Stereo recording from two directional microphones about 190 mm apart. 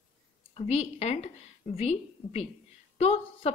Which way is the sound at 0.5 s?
30° left (ahead or behind).